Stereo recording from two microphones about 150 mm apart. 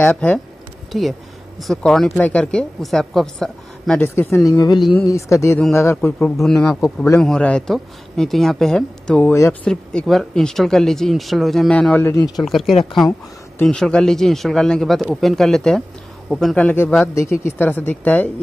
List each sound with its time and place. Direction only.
0.0 s a woman's voice: 10° left (ahead or behind)
4.1 s a woman's voice: 15° left (ahead or behind)
9.3 s a woman's voice: 20° left (ahead or behind)
9.7 s a woman's voice: 5° left (ahead or behind)